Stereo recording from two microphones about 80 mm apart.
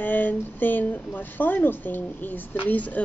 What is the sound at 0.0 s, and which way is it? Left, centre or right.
Speech, left.